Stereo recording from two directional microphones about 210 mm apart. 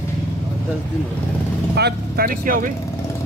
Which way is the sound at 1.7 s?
50° right (ahead or behind).